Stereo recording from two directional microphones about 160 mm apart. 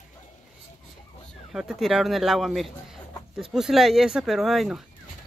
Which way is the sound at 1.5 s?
5° right (ahead or behind).